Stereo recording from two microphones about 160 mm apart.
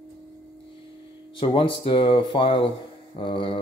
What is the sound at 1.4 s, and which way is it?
Speech, 30° left (ahead or behind).